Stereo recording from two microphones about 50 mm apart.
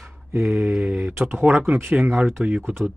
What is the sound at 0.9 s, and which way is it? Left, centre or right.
Speech, right.